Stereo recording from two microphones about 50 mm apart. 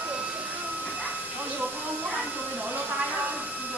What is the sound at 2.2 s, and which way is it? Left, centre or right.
Music, right.